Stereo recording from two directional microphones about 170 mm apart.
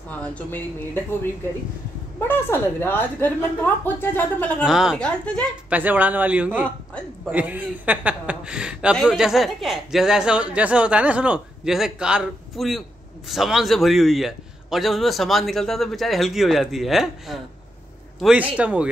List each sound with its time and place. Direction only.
0.1 s a woman's voice: 10° left (ahead or behind)
2.1 s a woman's voice: 15° left (ahead or behind)
5.7 s a man's voice: 10° right (ahead or behind)